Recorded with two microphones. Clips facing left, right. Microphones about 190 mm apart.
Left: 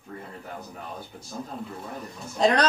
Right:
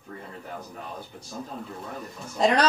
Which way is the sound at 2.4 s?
5° right (ahead or behind).